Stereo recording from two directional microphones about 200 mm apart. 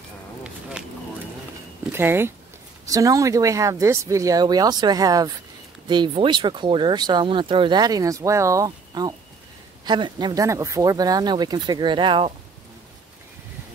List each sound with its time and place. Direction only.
1.9 s speech: 10° right (ahead or behind)